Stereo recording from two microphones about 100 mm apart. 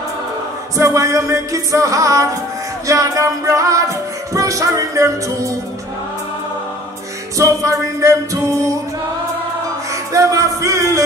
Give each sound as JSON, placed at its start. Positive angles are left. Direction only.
{"t": 0.7, "sound": "music", "side_deg": -30}
{"t": 7.3, "sound": "music", "side_deg": -30}
{"t": 10.1, "sound": "music", "side_deg": -35}